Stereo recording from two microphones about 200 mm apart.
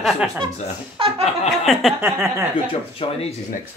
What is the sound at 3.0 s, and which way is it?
Speech, 25° left (ahead or behind).